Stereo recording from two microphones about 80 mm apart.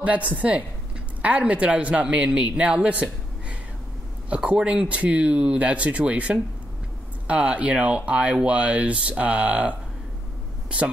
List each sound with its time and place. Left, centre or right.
0.0 s speech: centre